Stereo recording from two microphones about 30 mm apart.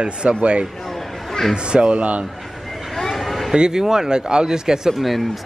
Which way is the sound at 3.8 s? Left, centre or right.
Centre.